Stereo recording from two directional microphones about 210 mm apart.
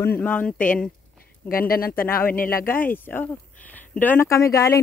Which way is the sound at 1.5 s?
45° left (ahead or behind).